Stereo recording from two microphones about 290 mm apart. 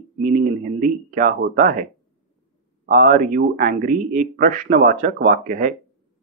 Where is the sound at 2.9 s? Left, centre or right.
Right.